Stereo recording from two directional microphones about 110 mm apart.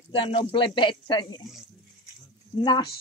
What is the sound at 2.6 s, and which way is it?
Speech, 45° left (ahead or behind).